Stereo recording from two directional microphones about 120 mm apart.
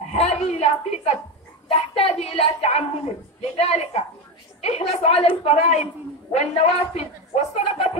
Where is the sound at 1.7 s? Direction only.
60° left (ahead or behind).